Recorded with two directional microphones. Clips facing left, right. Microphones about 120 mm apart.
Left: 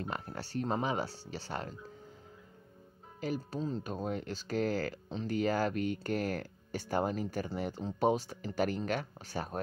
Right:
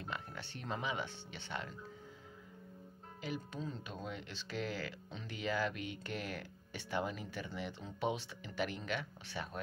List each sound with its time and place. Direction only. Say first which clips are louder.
0.0 s speech: left 6 dB; 40° left (ahead or behind)
3.2 s speech: left 7 dB; 40° left (ahead or behind)